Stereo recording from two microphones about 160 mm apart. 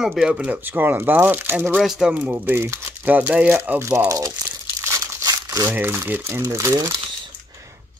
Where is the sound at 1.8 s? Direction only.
5° right (ahead or behind); by 7.5 s 30° right (ahead or behind).